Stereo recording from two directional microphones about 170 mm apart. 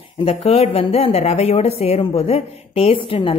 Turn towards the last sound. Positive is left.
turn(degrees=30)  # may be behind; listen again after turning